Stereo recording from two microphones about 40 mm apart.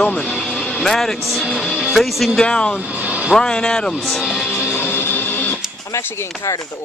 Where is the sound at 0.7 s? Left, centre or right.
Centre.